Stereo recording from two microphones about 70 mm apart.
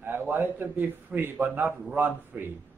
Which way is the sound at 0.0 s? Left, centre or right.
Right.